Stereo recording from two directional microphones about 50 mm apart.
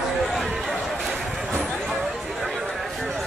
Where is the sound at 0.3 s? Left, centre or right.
Centre.